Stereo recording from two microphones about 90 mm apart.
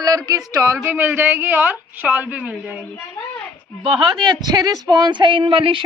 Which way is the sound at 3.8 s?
65° right (ahead or behind).